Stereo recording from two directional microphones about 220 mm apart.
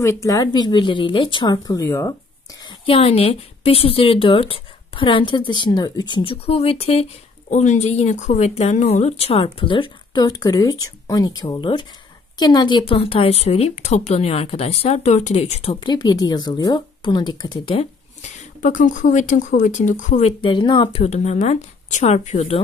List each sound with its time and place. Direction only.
0.0 s speech: 15° left (ahead or behind)
2.6 s speech: 25° left (ahead or behind)